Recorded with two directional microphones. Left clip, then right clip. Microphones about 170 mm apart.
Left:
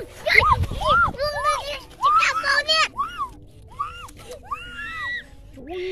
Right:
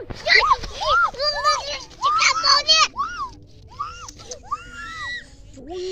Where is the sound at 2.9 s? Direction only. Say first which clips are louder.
Right 1 dB; 5° left (ahead or behind).